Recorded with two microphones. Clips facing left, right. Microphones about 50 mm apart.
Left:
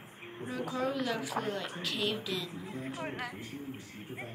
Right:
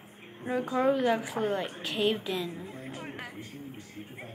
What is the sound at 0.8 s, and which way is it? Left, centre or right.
A woman's voice, right.